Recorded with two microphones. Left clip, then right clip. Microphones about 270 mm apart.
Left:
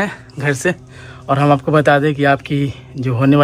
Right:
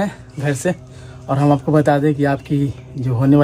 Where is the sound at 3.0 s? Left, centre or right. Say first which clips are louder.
Left 1 dB; left.